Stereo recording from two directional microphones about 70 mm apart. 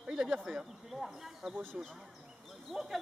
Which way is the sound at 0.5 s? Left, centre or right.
Centre.